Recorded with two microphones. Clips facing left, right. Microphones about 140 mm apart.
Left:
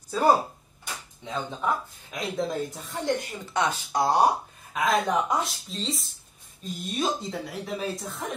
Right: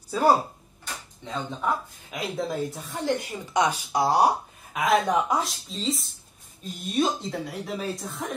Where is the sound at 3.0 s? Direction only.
10° right (ahead or behind).